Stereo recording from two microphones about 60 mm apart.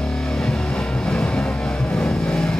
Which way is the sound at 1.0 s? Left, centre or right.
Centre.